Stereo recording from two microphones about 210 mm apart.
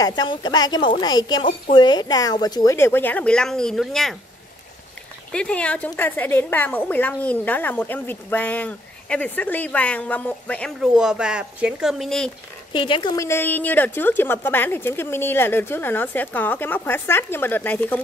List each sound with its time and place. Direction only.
0.0 s a woman's voice: 20° left (ahead or behind); by 4.2 s centre (ahead or behind)
5.3 s a woman's voice: 5° left (ahead or behind)
12.7 s a woman's voice: 25° left (ahead or behind)